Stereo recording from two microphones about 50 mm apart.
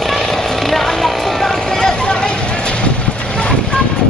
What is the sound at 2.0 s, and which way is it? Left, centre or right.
Vehicle, centre.